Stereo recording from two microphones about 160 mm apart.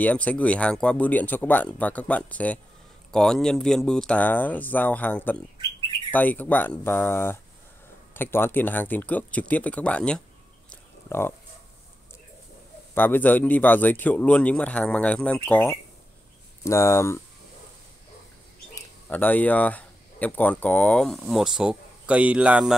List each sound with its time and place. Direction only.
0.0 s speech: 10° left (ahead or behind)
10.7 s a sound: 15° left (ahead or behind)
12.9 s speech: 10° left (ahead or behind)
18.8 s speech: 10° left (ahead or behind); by 22.8 s 5° right (ahead or behind)